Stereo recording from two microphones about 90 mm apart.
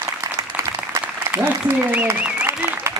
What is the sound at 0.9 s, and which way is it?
Applause, 30° right (ahead or behind).